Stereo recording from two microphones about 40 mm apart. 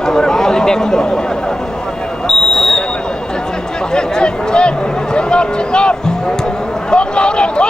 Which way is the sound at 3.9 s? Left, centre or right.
Left.